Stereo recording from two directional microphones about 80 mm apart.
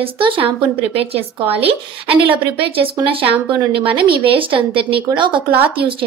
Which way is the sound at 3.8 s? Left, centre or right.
Right.